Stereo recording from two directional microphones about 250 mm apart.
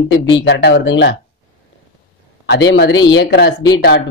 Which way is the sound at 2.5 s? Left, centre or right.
Left.